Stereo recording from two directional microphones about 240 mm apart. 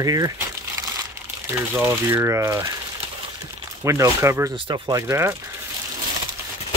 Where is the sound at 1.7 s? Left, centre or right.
Centre.